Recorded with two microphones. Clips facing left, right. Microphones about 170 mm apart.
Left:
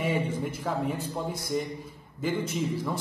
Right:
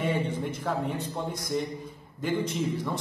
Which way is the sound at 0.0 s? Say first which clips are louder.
Even; 5° left (ahead or behind).